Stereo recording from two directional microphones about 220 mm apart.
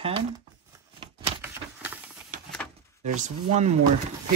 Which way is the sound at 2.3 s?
35° right (ahead or behind).